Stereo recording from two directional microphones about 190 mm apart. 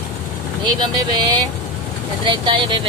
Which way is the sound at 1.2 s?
20° right (ahead or behind).